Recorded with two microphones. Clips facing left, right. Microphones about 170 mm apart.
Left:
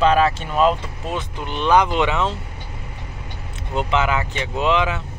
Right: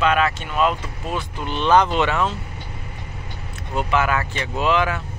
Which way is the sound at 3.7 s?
20° left (ahead or behind).